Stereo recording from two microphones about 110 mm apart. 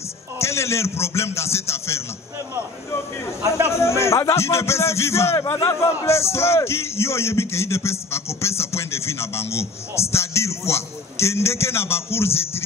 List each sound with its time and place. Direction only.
0.4 s a man's voice: 25° left (ahead or behind)
3.6 s a man's voice: 25° left (ahead or behind)